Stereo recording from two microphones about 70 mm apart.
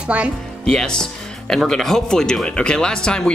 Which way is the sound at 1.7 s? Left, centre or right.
Centre.